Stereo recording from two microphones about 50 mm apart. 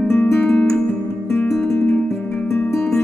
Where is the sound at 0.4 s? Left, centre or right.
Left.